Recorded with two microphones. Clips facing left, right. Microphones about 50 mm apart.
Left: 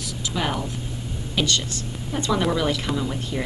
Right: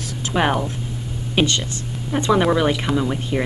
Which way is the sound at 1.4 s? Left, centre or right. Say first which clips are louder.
Right 4 dB; right.